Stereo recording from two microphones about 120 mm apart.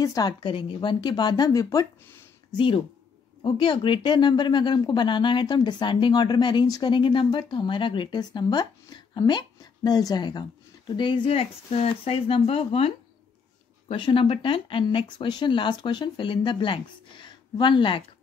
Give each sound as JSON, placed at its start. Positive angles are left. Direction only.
{"t": 0.0, "sound": "speech", "side_deg": 30}
{"t": 2.5, "sound": "speech", "side_deg": 45}